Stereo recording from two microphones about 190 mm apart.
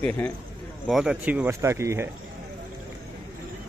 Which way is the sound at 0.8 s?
Centre (ahead or behind).